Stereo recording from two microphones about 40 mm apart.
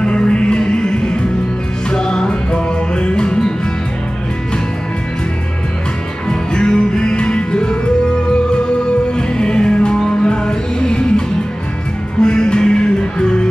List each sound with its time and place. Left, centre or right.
0.0 s music: left
6.2 s music: left
9.1 s music: left